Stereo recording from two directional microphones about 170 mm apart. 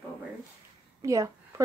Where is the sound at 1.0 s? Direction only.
20° right (ahead or behind).